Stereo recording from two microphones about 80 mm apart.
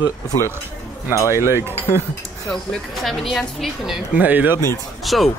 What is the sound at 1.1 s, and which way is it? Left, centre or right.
Speech, left.